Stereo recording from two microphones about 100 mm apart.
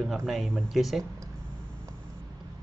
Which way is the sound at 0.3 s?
Centre (ahead or behind).